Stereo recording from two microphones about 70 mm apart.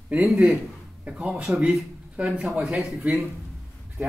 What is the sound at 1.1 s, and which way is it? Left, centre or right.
Speech, centre.